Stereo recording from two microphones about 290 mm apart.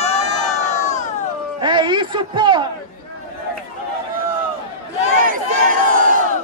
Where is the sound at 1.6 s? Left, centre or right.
Centre.